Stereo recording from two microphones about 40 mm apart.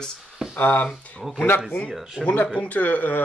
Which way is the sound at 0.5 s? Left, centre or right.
Left.